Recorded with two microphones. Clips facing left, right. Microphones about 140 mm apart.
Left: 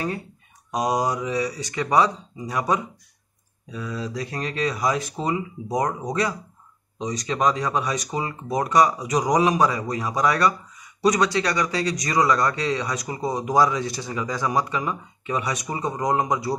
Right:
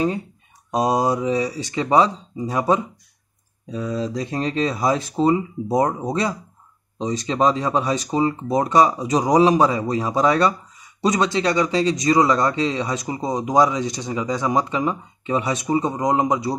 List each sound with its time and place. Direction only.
0.7 s speech: 25° right (ahead or behind)